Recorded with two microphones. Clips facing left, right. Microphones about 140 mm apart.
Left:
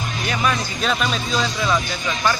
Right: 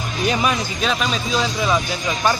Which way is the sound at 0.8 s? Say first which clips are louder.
Even; centre (ahead or behind).